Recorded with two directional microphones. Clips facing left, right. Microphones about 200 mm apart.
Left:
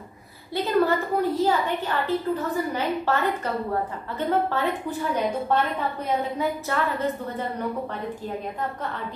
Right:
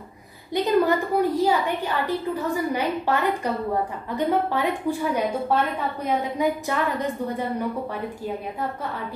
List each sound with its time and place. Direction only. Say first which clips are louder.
0.6 s a woman's voice: right 2 dB; 15° right (ahead or behind)